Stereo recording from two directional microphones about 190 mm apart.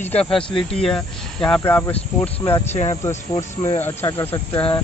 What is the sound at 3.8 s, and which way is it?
Speech, 10° left (ahead or behind).